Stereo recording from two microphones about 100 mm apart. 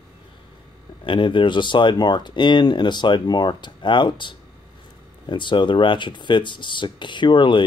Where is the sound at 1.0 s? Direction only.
60° left (ahead or behind).